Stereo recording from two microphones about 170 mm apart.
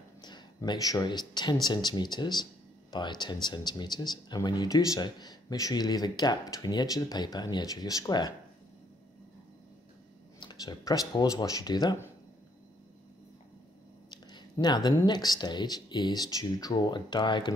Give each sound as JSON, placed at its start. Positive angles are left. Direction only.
{"t": 0.2, "sound": "speech", "side_deg": 25}
{"t": 10.4, "sound": "speech", "side_deg": 25}
{"t": 14.3, "sound": "speech", "side_deg": 25}